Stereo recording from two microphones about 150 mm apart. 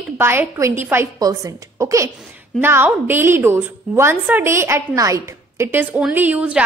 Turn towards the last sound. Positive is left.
turn(degrees=-10)  # may be behind; listen again after turning